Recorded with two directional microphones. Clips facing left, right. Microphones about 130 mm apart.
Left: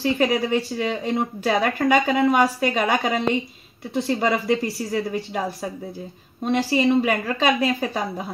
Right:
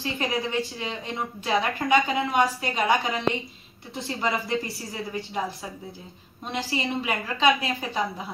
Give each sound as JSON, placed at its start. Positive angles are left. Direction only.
{"t": 0.0, "sound": "a woman's voice", "side_deg": 55}